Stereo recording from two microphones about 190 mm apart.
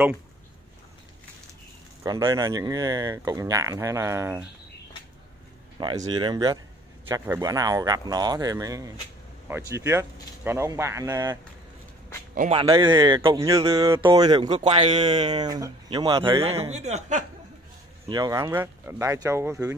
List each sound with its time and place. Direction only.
2.0 s speech: 15° right (ahead or behind)
5.8 s speech: 25° right (ahead or behind)
12.4 s speech: 35° right (ahead or behind)
12.6 s speech: 20° right (ahead or behind)
18.0 s speech: 20° right (ahead or behind)